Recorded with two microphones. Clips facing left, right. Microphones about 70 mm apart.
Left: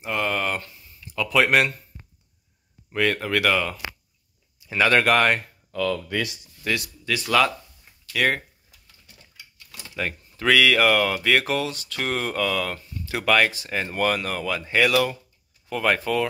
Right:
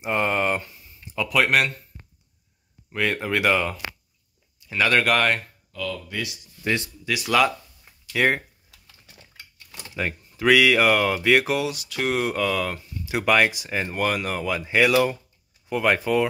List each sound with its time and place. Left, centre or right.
0.0 s speech: right; by 1.7 s centre
2.9 s speech: centre
4.6 s speech: centre
5.7 s speech: left
6.6 s speech: centre
8.1 s speech: centre
9.7 s speech: centre